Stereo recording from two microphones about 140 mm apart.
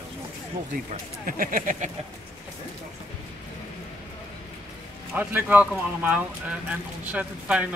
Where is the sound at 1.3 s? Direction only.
80° right.